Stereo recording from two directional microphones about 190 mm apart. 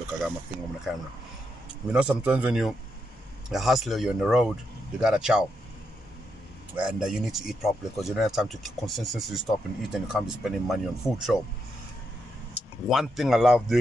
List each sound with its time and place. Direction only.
0.9 s a man's voice: centre (ahead or behind)
6.8 s speech: 5° right (ahead or behind)
12.8 s speech: centre (ahead or behind)